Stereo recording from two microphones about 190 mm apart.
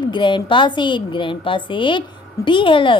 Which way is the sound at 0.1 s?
25° left (ahead or behind).